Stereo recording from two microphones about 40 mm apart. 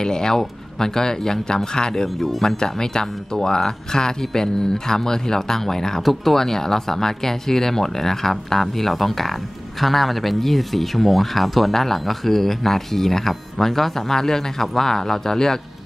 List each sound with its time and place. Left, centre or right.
0.0 s speech: centre
2.1 s speech: centre